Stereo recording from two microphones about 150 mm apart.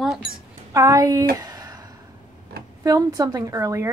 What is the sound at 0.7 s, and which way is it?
Speech, 20° right (ahead or behind).